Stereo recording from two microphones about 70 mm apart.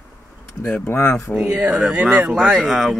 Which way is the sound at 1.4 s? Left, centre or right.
Right.